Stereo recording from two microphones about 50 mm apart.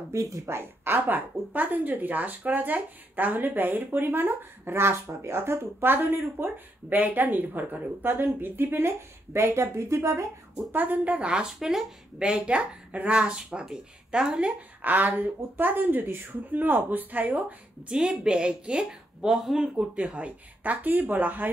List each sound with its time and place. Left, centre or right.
0.1 s speech: right
0.9 s speech: right
5.9 s speech: right
8.8 s speech: right
10.7 s speech: right; by 14.5 s centre
14.8 s speech: right
17.9 s speech: centre
19.7 s speech: right